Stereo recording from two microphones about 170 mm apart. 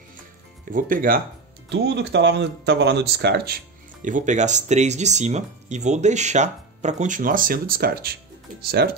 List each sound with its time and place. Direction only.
0.7 s speech: 55° right (ahead or behind)
1.7 s speech: 90° right; by 8.9 s 70° right (ahead or behind)